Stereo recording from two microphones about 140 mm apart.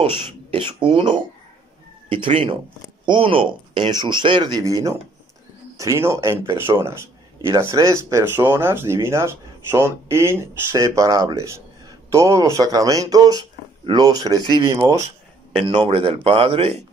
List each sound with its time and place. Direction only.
0.1 s speech: 35° right (ahead or behind)
15.5 s speech: 45° right (ahead or behind)